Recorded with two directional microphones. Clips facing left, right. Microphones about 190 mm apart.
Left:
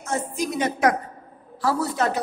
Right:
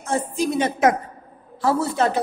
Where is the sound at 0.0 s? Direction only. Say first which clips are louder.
Right 4 dB; 30° right (ahead or behind).